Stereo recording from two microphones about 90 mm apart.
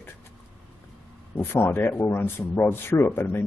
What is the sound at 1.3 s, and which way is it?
Speech, 25° left (ahead or behind).